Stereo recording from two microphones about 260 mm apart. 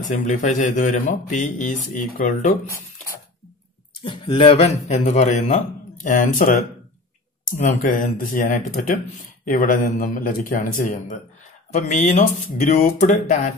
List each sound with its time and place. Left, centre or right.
0.1 s speech: left
4.0 s speech: centre
11.7 s speech: left